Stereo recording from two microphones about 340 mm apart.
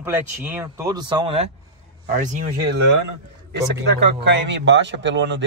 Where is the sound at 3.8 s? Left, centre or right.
Right.